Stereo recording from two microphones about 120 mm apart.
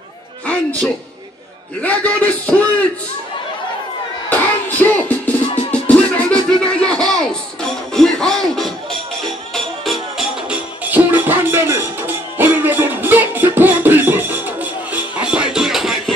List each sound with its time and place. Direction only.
1.8 s speech: 10° left (ahead or behind)
4.3 s music: 15° left (ahead or behind)
10.9 s music: 15° right (ahead or behind)